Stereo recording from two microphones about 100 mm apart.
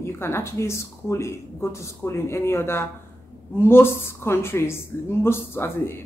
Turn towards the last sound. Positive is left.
turn(degrees=25)  # may be behind; listen again after turning